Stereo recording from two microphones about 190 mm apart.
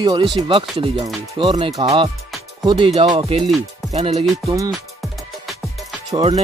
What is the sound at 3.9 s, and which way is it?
Music, 35° right (ahead or behind).